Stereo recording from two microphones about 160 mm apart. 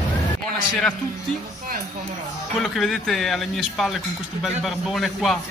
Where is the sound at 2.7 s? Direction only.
Centre (ahead or behind).